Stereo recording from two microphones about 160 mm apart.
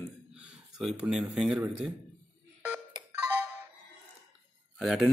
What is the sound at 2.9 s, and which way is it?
Music, 15° right (ahead or behind).